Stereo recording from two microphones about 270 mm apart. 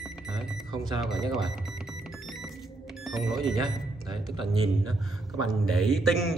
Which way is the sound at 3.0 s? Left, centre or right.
Centre.